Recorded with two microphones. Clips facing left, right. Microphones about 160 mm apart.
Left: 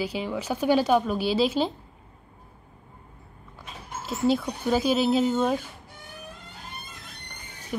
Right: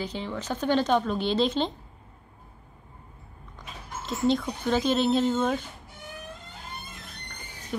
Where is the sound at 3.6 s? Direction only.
5° left (ahead or behind).